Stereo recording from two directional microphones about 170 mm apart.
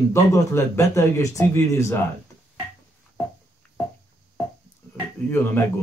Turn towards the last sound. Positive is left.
turn(degrees=10)  # may be behind; listen again after turning